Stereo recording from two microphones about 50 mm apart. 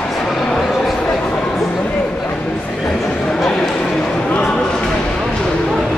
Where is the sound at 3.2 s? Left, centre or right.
Centre.